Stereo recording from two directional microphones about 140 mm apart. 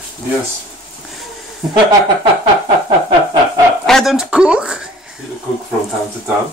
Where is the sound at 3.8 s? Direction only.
Centre (ahead or behind).